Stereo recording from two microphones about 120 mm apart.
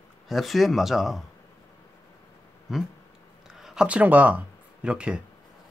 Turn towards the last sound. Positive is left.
turn(degrees=-10)  # may be behind; listen again after turning